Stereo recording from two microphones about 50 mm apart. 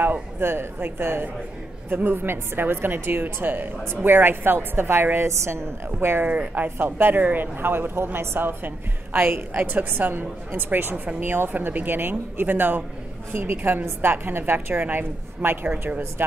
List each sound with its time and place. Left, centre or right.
0.0 s speech: right
5.9 s speech: right
6.2 s speech: right
6.8 s speech: right
11.5 s speech: right